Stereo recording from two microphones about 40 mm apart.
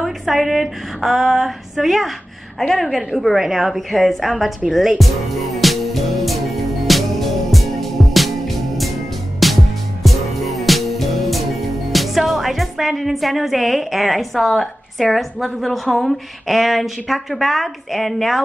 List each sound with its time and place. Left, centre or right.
0.0 s a woman's voice: centre
5.6 s music: centre